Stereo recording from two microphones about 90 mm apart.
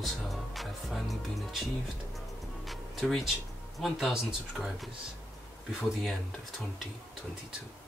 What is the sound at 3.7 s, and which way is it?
Speech, centre (ahead or behind).